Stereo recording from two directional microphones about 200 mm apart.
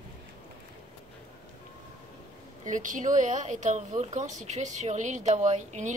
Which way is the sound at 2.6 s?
40° right (ahead or behind).